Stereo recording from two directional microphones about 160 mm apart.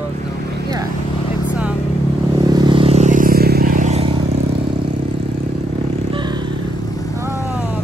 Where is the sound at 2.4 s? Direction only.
25° right (ahead or behind); by 3.9 s 65° right (ahead or behind).